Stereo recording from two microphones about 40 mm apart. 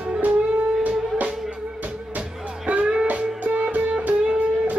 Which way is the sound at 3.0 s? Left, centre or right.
Right.